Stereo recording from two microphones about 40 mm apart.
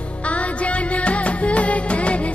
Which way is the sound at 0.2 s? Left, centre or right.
Left.